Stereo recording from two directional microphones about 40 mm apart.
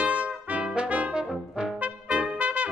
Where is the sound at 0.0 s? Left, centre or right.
Right.